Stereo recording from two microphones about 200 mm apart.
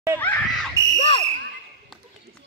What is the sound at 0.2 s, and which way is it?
Screaming, 5° left (ahead or behind).